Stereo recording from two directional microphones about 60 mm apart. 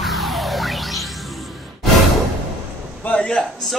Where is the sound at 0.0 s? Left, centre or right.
Centre.